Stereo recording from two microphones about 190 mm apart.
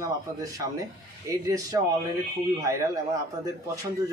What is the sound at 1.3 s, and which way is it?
Speech, 20° right (ahead or behind).